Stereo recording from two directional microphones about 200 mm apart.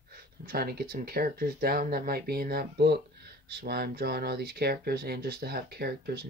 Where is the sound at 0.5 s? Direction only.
50° right (ahead or behind).